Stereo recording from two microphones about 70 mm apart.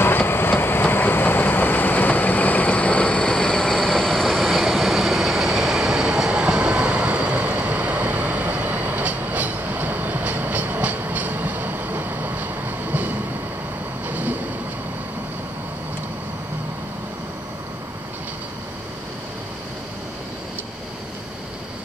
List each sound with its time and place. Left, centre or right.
0.0 s vehicle: left; by 13.1 s right
14.0 s train: right